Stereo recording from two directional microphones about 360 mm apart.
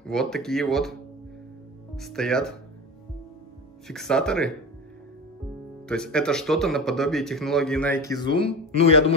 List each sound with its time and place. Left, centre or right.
0.0 s speech: centre
2.0 s speech: centre
3.8 s speech: centre
5.9 s speech: centre